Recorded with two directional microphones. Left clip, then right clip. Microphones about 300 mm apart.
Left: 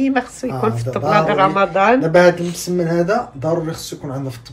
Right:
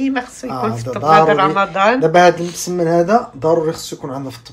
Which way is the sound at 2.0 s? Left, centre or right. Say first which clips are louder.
Right 2 dB; right.